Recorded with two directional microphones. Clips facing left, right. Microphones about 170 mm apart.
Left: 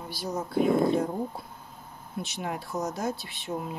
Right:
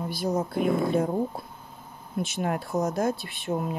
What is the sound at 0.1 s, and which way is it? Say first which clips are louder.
Speech: right 5 dB; 55° right (ahead or behind).